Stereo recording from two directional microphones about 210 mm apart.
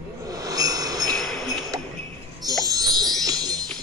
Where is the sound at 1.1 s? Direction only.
Centre (ahead or behind).